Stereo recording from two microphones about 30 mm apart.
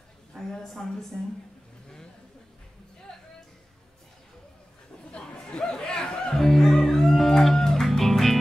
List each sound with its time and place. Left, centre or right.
0.6 s a woman's voice: centre
3.1 s music: left
5.1 s chatter: left
6.3 s music: centre
8.0 s music: centre